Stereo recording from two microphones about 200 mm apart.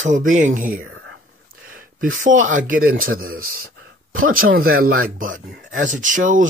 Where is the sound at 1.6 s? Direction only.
45° right (ahead or behind).